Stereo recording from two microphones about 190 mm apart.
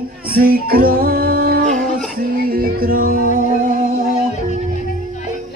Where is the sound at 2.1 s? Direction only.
50° right (ahead or behind).